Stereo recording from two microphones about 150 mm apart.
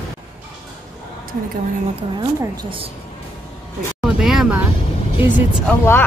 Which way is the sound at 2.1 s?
30° right (ahead or behind).